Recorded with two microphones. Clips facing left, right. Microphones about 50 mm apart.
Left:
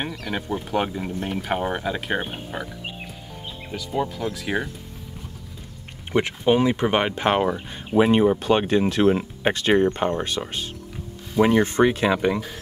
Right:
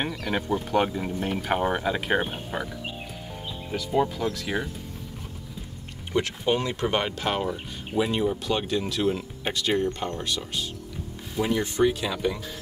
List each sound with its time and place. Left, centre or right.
0.0 s speech: centre
3.7 s speech: centre
4.3 s speech: centre
6.1 s speech: centre; by 12.4 s left